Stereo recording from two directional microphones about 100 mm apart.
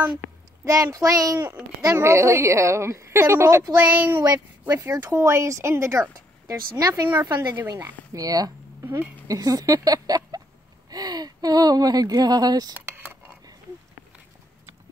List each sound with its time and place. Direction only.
0.7 s a woman's voice: 35° right (ahead or behind)
3.9 s a woman's voice: 20° right (ahead or behind)
4.2 s speech: 35° right (ahead or behind)
7.2 s speech: 40° right (ahead or behind)
7.6 s speech: 30° right (ahead or behind)
12.8 s a sound: 20° right (ahead or behind)